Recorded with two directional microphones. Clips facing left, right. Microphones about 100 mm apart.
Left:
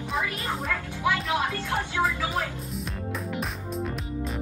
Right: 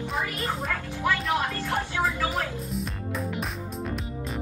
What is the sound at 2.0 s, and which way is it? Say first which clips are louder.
Music: left 1 dB; centre (ahead or behind).